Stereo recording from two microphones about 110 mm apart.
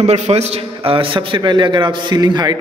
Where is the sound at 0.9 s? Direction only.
55° right (ahead or behind).